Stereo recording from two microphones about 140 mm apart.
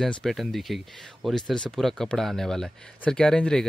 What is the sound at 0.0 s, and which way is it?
Speech, centre (ahead or behind).